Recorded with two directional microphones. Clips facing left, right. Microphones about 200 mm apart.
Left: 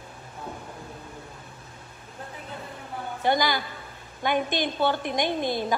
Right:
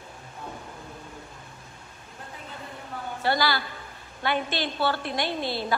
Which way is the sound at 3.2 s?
15° left (ahead or behind).